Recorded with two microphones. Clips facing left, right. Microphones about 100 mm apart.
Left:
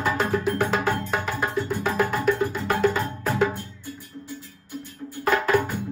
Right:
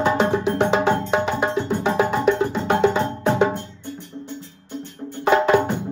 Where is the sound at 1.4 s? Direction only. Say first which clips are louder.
Right 4 dB; 25° right (ahead or behind).